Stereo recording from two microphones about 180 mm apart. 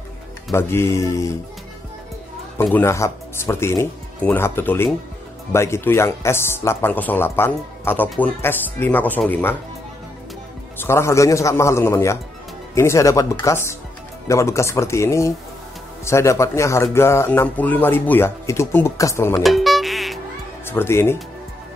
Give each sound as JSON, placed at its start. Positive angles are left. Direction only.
{"t": 0.5, "sound": "speech", "side_deg": 15}
{"t": 2.5, "sound": "speech", "side_deg": 10}
{"t": 10.8, "sound": "speech", "side_deg": 15}
{"t": 19.4, "sound": "music", "side_deg": 0}
{"t": 20.6, "sound": "speech", "side_deg": 15}